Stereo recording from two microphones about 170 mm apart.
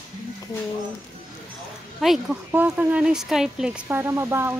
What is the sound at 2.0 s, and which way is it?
A woman's voice, centre (ahead or behind).